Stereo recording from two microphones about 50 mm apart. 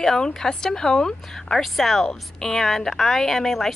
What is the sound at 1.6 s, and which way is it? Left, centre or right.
Speech, centre.